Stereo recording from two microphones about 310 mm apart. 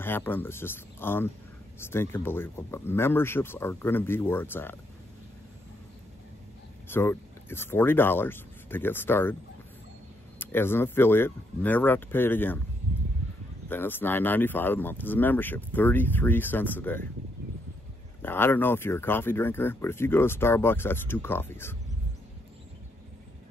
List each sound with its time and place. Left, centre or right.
0.0 s speech: centre
6.9 s speech: centre
10.4 s speech: centre
13.7 s speech: centre
18.2 s speech: centre